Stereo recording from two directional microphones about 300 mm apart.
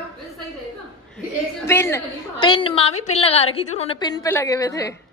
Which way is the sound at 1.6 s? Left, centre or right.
Centre.